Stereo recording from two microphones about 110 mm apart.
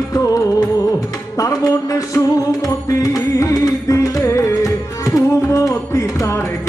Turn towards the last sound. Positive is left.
turn(degrees=25)  # may be behind; listen again after turning